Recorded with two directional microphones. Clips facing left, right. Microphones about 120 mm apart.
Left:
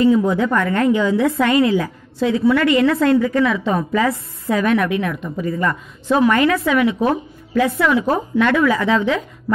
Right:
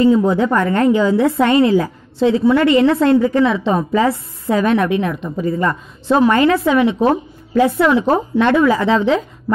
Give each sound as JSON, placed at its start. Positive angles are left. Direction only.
{"t": 0.0, "sound": "a woman's voice", "side_deg": -30}